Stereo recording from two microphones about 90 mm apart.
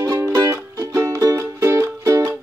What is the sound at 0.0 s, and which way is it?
Music, 30° right (ahead or behind).